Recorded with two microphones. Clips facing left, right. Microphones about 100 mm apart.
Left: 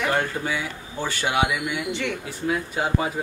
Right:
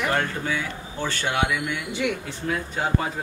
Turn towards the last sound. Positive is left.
turn(degrees=10)  # may be behind; listen again after turning